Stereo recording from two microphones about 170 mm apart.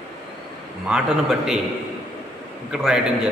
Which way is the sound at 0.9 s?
5° right (ahead or behind).